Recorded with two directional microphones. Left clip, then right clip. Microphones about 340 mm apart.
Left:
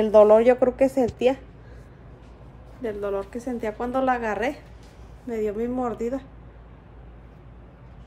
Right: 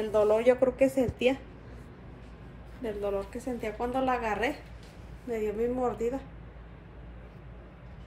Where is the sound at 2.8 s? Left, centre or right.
Centre.